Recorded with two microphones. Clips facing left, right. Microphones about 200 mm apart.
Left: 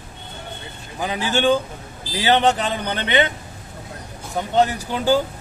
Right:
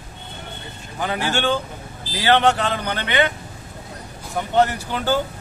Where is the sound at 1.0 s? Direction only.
15° left (ahead or behind).